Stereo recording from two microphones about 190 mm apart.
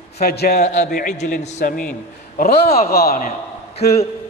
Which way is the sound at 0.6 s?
40° left (ahead or behind).